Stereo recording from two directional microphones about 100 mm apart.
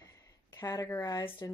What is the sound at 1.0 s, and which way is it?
Speech, 35° left (ahead or behind).